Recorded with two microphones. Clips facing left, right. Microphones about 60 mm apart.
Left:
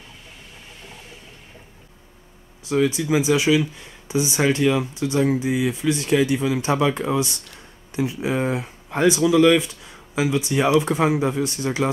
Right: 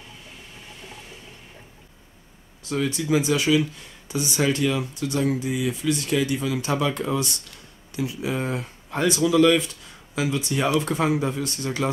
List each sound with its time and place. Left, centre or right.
2.6 s speech: centre